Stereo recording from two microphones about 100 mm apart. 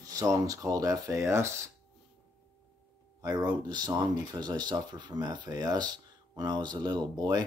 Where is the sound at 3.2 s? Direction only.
40° right (ahead or behind).